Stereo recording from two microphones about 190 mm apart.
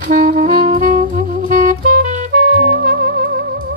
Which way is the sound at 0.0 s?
45° right (ahead or behind).